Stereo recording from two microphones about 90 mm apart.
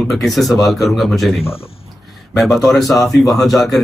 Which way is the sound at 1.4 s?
90° left.